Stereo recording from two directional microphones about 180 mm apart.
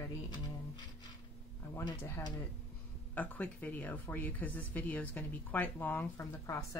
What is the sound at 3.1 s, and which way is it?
Speech, 10° left (ahead or behind).